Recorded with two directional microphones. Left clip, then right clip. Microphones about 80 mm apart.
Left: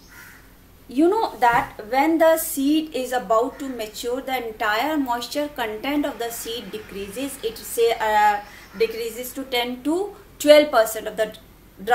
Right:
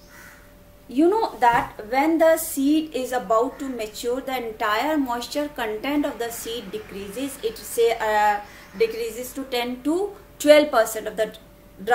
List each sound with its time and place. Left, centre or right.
0.9 s a woman's voice: right